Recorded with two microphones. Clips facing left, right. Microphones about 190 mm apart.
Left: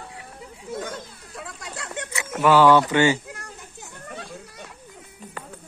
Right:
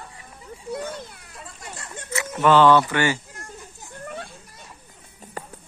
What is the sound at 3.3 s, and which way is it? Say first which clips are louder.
Children playing: left 1 dB; 65° left (ahead or behind).